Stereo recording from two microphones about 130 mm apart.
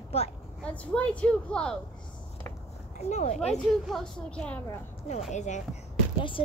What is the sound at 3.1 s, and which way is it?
Speech, 60° left (ahead or behind).